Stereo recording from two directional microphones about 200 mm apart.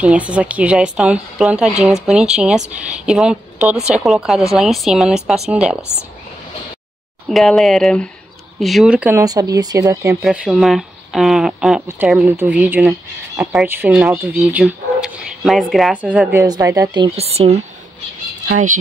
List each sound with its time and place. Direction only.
0.0 s speech: 5° right (ahead or behind)
7.2 s speech: centre (ahead or behind)
9.2 s speech: 15° right (ahead or behind)
10.2 s speech: 5° right (ahead or behind)
16.4 s speech: 20° right (ahead or behind); by 18.8 s 40° right (ahead or behind)